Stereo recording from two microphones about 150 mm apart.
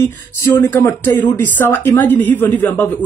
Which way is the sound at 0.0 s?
15° left (ahead or behind).